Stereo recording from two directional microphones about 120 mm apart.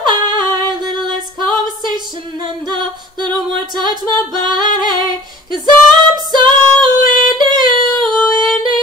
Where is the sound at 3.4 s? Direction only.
35° right (ahead or behind).